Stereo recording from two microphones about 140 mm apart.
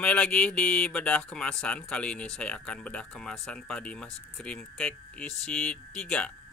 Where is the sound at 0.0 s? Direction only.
10° left (ahead or behind).